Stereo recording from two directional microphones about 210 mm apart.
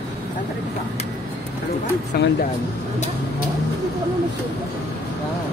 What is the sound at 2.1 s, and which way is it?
Speech, 50° left (ahead or behind).